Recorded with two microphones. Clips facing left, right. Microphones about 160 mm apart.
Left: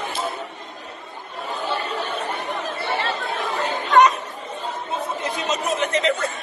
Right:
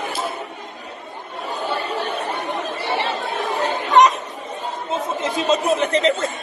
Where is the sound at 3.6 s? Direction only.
15° right (ahead or behind).